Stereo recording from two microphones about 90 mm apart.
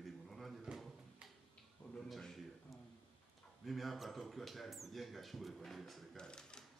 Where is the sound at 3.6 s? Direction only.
Centre (ahead or behind).